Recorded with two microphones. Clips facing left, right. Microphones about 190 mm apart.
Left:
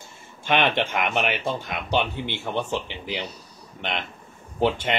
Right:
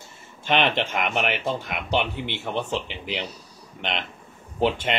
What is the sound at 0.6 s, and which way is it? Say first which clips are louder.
Speech: even; centre (ahead or behind).